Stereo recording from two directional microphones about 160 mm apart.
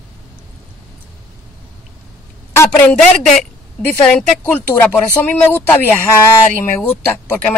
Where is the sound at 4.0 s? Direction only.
5° left (ahead or behind).